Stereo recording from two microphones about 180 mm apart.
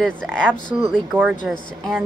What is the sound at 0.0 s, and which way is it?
Speech, 5° left (ahead or behind).